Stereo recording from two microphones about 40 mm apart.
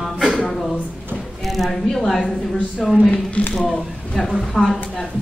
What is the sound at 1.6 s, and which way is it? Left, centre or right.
A woman's voice, centre.